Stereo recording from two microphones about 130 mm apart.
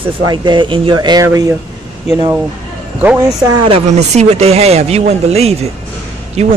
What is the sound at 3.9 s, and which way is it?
A man's voice, 60° right (ahead or behind).